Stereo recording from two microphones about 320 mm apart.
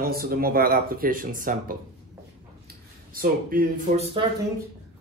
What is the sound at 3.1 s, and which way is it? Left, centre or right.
A man's voice, right.